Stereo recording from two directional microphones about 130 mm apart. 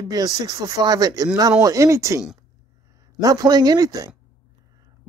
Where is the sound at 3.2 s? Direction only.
30° right (ahead or behind).